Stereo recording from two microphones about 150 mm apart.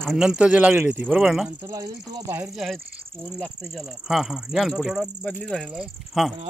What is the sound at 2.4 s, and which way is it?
Speech, centre (ahead or behind).